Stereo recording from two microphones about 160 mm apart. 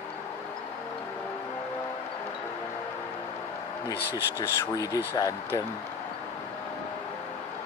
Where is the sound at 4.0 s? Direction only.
90° left.